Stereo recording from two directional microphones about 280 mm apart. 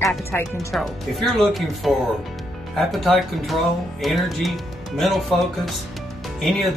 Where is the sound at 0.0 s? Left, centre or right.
Centre.